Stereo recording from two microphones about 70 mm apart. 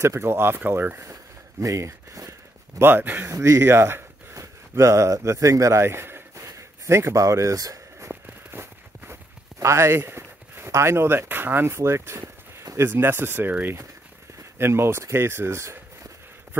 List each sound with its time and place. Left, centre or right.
0.0 s speech: right
1.6 s speech: right
2.8 s speech: right
3.3 s speech: right
6.3 s a sound: right
8.1 s a sound: right
12.7 s speech: right